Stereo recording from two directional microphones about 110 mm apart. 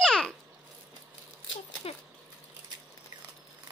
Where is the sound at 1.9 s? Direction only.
60° left (ahead or behind).